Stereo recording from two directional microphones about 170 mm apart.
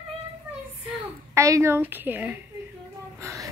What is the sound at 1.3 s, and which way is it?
A woman's voice, 15° right (ahead or behind).